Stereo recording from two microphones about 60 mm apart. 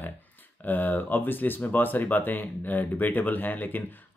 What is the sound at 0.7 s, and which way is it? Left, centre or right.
Speech, left.